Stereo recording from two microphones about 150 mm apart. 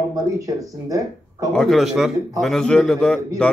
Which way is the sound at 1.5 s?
Centre (ahead or behind).